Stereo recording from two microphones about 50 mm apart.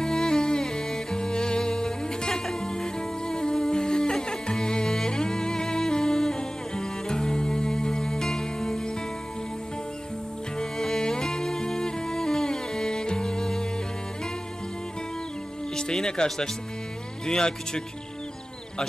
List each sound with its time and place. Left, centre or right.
0.0 s music: centre
10.6 s music: centre
15.7 s music: centre
17.3 s speech: centre